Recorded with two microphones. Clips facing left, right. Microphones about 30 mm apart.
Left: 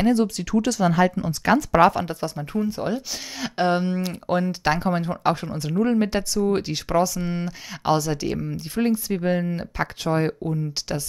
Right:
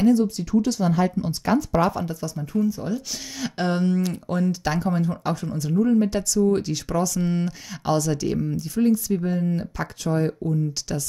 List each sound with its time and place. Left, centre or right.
0.1 s speech: left
2.0 s speech: left
3.3 s speech: centre; by 6.0 s left
6.0 s speech: left
7.2 s speech: centre
8.5 s speech: left
9.5 s speech: left